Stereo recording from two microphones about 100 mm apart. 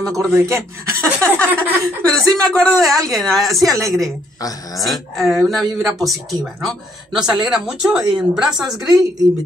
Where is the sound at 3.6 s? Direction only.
35° right (ahead or behind).